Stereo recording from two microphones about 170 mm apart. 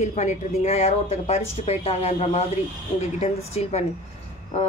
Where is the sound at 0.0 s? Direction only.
45° left (ahead or behind).